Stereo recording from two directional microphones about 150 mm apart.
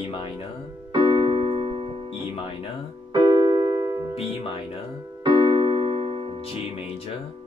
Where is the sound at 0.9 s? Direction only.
30° right (ahead or behind).